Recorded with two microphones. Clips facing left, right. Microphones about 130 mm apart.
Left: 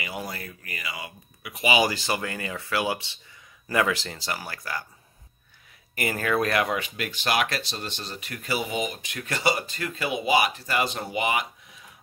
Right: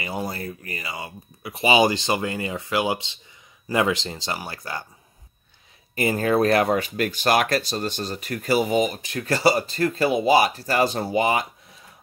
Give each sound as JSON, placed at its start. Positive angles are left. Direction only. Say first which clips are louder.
{"t": 0.0, "sound": "speech", "louder": "right 5 dB", "side_deg": -35}
{"t": 5.9, "sound": "speech", "louder": "right 5 dB", "side_deg": -25}